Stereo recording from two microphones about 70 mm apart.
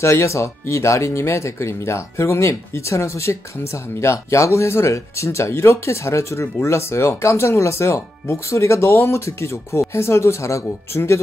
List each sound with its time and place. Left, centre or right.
0.0 s speech: left